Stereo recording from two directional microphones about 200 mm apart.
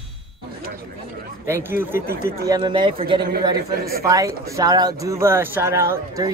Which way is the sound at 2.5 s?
25° right (ahead or behind).